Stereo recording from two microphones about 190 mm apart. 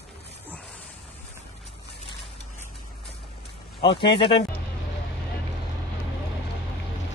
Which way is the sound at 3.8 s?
25° left (ahead or behind).